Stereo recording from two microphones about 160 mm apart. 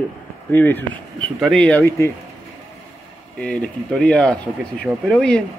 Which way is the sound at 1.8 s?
15° left (ahead or behind).